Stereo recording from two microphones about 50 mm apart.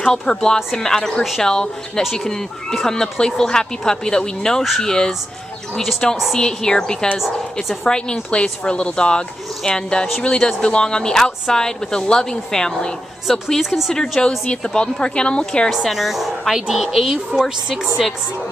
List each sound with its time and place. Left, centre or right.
0.0 s speech: centre
6.3 s speech: centre
13.3 s speech: centre
15.7 s speech: centre